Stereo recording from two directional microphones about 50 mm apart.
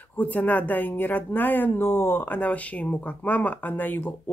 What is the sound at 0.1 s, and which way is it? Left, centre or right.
Speech, left.